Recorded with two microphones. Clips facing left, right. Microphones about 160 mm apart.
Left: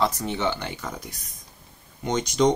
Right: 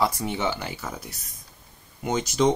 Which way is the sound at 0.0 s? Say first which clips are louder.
Even; 10° right (ahead or behind).